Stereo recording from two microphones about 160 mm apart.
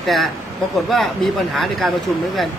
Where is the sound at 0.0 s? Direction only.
Centre (ahead or behind).